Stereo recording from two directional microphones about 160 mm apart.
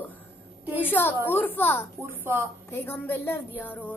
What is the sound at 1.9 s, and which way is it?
Speech, 15° right (ahead or behind).